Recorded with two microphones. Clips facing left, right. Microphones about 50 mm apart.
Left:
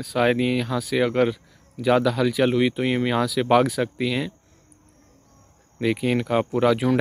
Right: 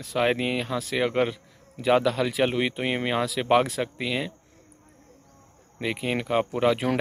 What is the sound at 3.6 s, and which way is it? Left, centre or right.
Speech, centre.